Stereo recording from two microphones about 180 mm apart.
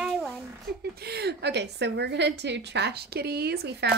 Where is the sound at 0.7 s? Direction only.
65° right (ahead or behind).